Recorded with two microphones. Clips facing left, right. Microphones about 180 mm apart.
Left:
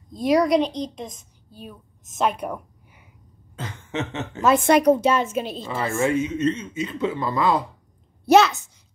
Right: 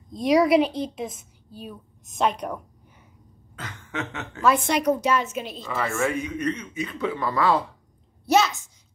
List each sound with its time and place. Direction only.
0.1 s a woman's voice: centre (ahead or behind)
3.5 s a woman's voice: 25° left (ahead or behind)
8.3 s a child's voice: 60° left (ahead or behind)